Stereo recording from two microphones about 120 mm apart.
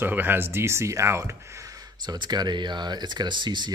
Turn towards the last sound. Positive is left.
turn(degrees=-40)  # may be behind; listen again after turning